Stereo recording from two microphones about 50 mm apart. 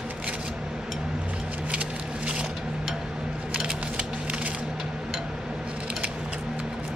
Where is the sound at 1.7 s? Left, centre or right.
Right.